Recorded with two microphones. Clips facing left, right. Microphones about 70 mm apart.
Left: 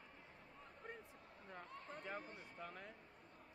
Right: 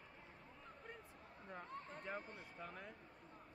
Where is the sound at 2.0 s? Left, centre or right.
Centre.